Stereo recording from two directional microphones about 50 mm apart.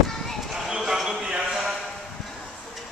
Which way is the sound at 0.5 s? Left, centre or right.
Centre.